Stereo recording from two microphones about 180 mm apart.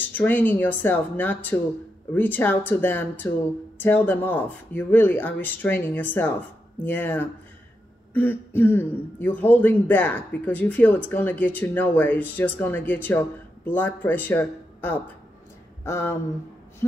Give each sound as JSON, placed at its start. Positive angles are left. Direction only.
{"t": 0.0, "sound": "speech", "side_deg": 10}